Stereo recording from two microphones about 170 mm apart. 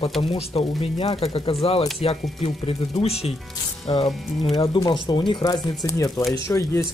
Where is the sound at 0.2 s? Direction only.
35° left (ahead or behind).